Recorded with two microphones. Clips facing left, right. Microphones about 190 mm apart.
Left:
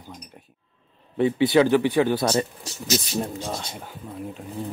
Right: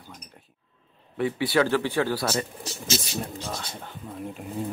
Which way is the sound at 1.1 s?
20° left (ahead or behind).